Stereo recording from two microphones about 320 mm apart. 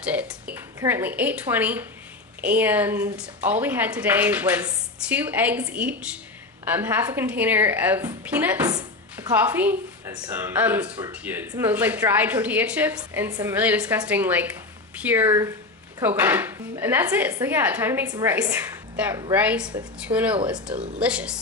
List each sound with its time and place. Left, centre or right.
0.0 s a woman's voice: centre
20.7 s speech: right
21.0 s a woman's voice: centre